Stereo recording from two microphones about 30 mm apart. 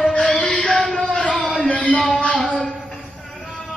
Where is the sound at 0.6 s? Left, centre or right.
Centre.